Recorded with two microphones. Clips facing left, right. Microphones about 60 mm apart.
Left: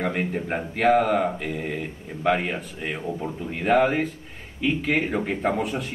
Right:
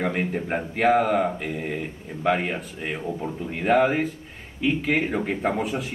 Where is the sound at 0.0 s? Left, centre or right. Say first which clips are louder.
Even; centre.